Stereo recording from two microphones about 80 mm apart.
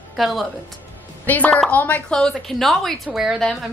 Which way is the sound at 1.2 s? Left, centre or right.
Centre.